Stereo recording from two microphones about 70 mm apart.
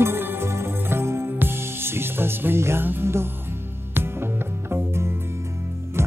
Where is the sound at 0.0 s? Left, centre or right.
Right.